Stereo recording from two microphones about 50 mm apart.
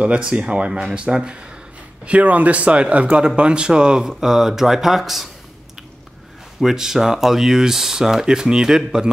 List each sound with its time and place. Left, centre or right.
0.0 s speech: right
2.0 s speech: right; by 5.3 s centre
6.6 s speech: centre